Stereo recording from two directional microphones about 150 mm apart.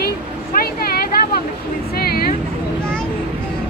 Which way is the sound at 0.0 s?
80° left.